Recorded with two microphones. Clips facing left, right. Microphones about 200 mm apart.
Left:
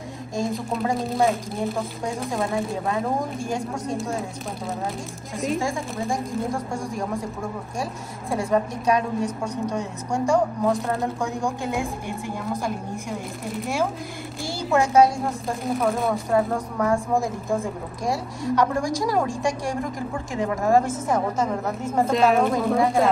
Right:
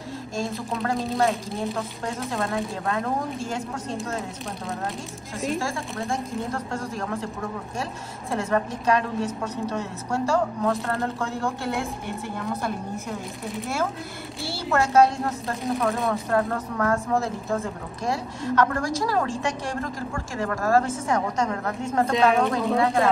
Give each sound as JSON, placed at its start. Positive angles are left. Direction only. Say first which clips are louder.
{"t": 0.9, "sound": "a woman's voice", "louder": "left 1 dB", "side_deg": 0}
{"t": 3.2, "sound": "speech", "louder": "left 2 dB", "side_deg": 15}
{"t": 6.1, "sound": "speech", "louder": "left 2 dB", "side_deg": 15}
{"t": 8.3, "sound": "speech", "louder": "left 2 dB", "side_deg": 10}
{"t": 14.4, "sound": "speech", "louder": "left 2 dB", "side_deg": 15}